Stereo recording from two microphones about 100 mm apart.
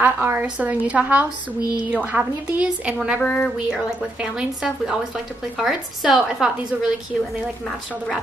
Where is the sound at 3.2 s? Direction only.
10° left (ahead or behind).